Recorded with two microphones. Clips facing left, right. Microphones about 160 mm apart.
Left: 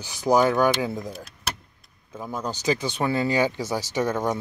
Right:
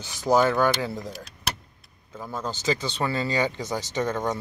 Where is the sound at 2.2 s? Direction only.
15° left (ahead or behind).